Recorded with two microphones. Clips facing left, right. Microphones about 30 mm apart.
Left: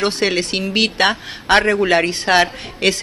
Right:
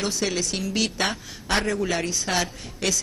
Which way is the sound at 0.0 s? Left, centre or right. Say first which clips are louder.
Left 8 dB; left.